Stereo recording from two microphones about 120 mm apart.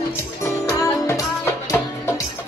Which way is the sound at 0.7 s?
25° left (ahead or behind).